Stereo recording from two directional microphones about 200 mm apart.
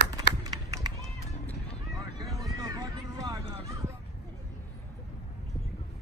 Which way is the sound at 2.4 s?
15° right (ahead or behind).